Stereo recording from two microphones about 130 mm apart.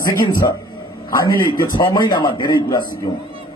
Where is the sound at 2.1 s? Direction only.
35° left (ahead or behind).